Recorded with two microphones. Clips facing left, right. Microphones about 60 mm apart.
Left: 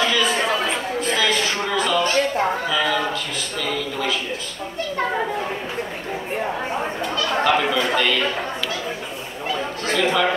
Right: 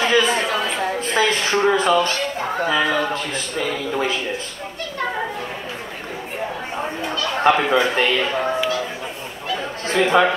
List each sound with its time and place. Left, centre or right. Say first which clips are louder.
0.0 s chatter: right 3 dB; right
1.1 s speech: right 3 dB; right
2.7 s a sound: right 2 dB; right
7.4 s speech: right 5 dB; right
9.9 s speech: right 4 dB; right